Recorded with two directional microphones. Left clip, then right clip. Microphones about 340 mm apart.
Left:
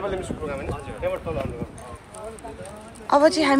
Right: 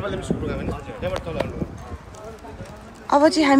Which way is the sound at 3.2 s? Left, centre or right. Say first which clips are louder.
Right 2 dB; centre.